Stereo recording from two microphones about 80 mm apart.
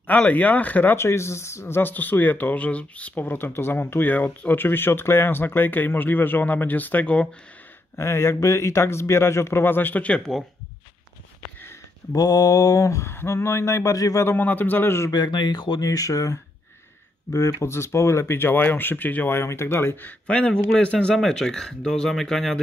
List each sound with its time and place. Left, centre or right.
0.0 s speech: centre
0.9 s speech: left; by 7.2 s centre
7.9 s a man's voice: left; by 10.4 s centre
12.1 s a man's voice: left
14.2 s speech: left
15.0 s speech: left
15.8 s speech: left; by 22.6 s centre